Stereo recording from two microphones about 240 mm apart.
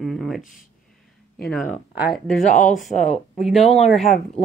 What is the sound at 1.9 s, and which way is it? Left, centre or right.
Speech, centre.